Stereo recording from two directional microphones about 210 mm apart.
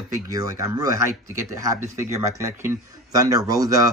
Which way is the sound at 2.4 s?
15° right (ahead or behind).